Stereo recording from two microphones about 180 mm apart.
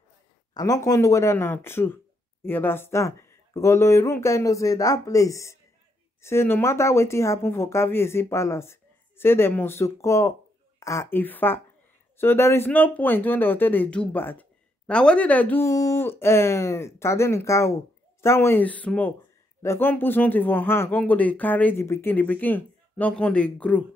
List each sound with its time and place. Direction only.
0.6 s speech: 20° left (ahead or behind)